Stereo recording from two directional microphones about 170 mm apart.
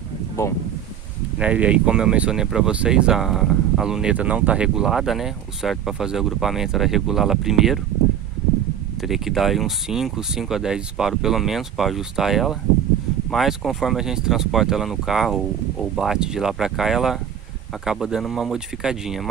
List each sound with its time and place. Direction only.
0.4 s speech: 15° left (ahead or behind)
1.4 s speech: 5° right (ahead or behind)
9.0 s speech: centre (ahead or behind)